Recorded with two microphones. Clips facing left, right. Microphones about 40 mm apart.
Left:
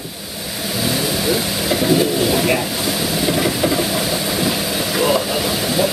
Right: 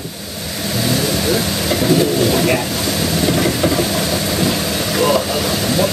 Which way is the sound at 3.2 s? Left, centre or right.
Centre.